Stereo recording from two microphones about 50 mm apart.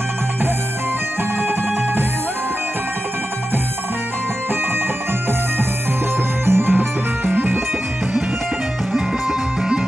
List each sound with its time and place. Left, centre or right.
6.4 s music: right